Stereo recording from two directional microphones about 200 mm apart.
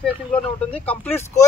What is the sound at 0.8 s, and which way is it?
Speech, 10° left (ahead or behind).